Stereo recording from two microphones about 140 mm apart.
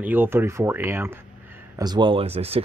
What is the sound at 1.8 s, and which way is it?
Speech, 30° right (ahead or behind).